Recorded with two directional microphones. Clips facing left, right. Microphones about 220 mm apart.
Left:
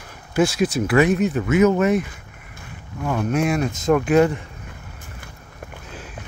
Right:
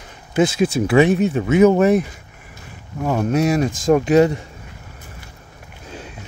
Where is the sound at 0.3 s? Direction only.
20° right (ahead or behind); by 4.1 s 40° right (ahead or behind).